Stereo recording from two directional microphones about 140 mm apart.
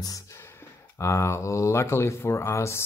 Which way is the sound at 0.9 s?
20° left (ahead or behind).